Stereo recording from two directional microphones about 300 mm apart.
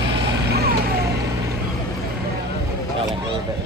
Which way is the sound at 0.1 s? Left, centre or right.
Right.